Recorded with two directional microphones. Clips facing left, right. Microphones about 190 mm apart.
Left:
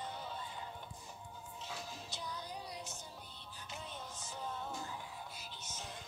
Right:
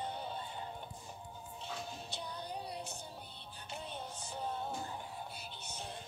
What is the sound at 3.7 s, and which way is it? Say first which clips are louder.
Music: right 4 dB; 30° right (ahead or behind).